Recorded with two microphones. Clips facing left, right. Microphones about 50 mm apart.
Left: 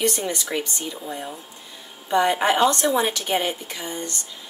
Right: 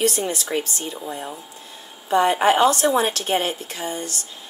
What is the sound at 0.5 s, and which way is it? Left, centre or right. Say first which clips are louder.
Speech: right 3 dB; centre.